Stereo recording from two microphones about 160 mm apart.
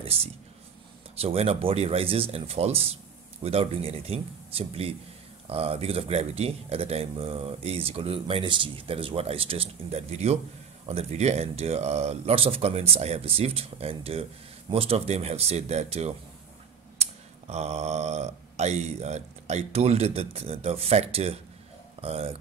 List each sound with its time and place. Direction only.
0.0 s speech: 35° right (ahead or behind)